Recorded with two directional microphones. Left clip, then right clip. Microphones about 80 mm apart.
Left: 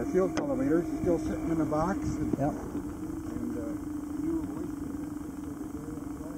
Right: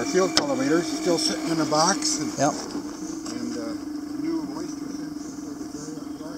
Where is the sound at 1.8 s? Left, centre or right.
Centre.